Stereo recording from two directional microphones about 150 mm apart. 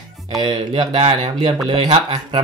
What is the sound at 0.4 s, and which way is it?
Speech, 30° right (ahead or behind).